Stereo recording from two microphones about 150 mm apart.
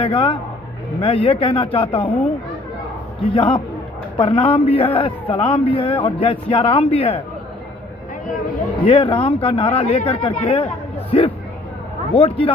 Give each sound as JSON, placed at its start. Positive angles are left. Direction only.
{"t": 0.0, "sound": "a man's voice", "side_deg": 35}
{"t": 2.0, "sound": "speech", "side_deg": 10}
{"t": 3.3, "sound": "a man's voice", "side_deg": 35}
{"t": 8.8, "sound": "a man's voice", "side_deg": 35}